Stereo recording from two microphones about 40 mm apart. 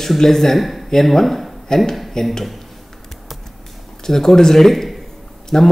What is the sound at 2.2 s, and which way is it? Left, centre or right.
Speech, centre.